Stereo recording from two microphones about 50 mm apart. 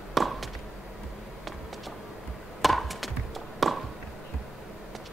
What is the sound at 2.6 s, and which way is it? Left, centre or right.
Music, centre.